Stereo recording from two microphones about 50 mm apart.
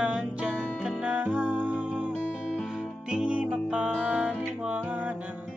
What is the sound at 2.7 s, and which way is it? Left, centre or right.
Music, centre.